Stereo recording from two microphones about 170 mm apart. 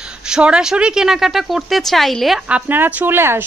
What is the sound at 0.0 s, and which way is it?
A woman's voice, 5° right (ahead or behind).